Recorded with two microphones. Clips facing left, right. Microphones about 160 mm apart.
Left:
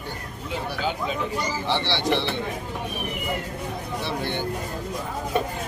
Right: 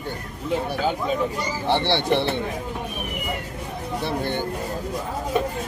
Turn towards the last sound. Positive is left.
turn(degrees=-45)  # may be behind; listen again after turning